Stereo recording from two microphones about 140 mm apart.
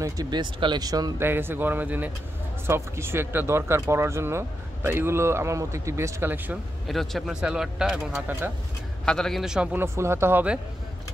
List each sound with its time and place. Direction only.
0.0 s speech: 30° right (ahead or behind)
1.2 s a man's voice: 15° right (ahead or behind)
6.9 s speech: centre (ahead or behind)
9.0 s a man's voice: 5° left (ahead or behind); by 10.6 s 10° right (ahead or behind)